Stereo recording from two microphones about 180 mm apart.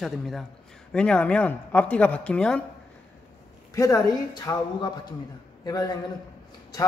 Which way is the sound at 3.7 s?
15° left (ahead or behind).